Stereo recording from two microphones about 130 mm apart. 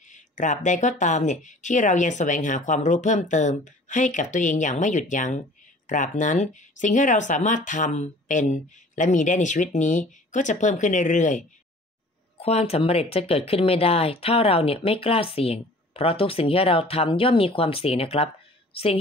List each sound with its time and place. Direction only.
0.1 s speech: 70° left (ahead or behind)
12.4 s speech: 50° left (ahead or behind)